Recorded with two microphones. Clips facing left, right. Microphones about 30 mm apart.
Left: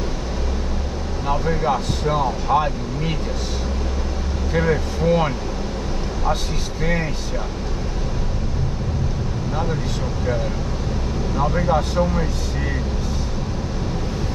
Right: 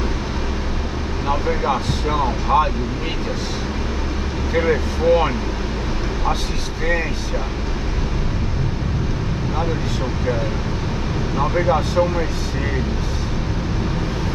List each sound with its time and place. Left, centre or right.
1.2 s speech: centre
4.6 s speech: centre
11.3 s speech: right